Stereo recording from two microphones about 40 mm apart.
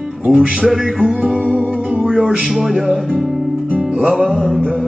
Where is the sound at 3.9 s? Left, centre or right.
Centre.